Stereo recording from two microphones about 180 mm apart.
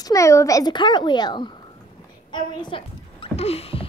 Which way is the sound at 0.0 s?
15° left (ahead or behind).